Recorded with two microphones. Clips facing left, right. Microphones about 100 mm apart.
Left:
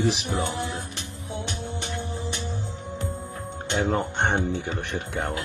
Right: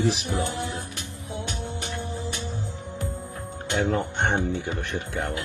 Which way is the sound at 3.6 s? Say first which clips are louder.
Even; 20° left (ahead or behind).